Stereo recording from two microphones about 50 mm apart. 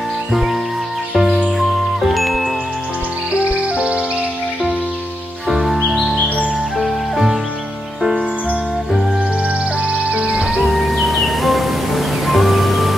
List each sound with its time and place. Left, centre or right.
0.3 s music: centre
3.7 s music: right
5.5 s music: centre
6.1 s music: left
6.8 s music: centre
10.0 s music: right
10.3 s music: centre